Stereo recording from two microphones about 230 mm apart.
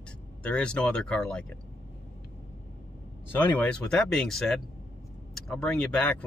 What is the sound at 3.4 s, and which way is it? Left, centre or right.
Speech, centre.